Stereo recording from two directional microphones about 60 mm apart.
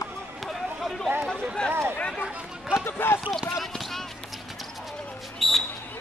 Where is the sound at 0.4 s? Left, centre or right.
Centre.